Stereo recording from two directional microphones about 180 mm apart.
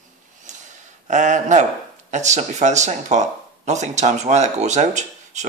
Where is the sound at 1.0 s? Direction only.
40° right (ahead or behind).